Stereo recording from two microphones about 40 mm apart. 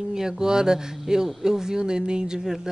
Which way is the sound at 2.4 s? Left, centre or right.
Centre.